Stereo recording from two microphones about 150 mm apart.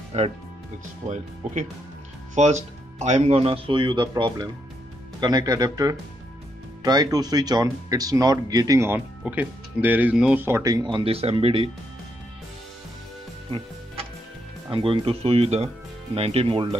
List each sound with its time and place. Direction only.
0.1 s speech: 45° right (ahead or behind)
14.7 s speech: 35° right (ahead or behind)